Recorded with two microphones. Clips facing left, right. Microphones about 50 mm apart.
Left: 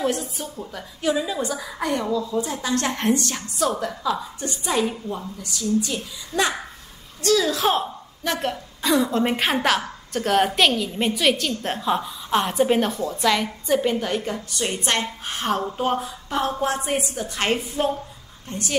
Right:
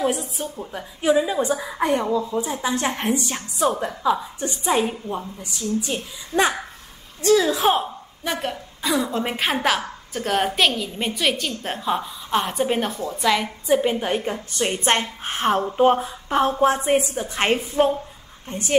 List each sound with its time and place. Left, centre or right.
0.6 s a woman's voice: right
2.3 s a woman's voice: centre
13.9 s a woman's voice: right